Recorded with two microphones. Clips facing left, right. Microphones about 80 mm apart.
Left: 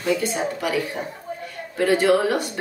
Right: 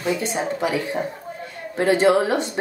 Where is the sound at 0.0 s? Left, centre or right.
Right.